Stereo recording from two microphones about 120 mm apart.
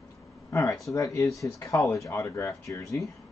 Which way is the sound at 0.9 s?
25° left (ahead or behind).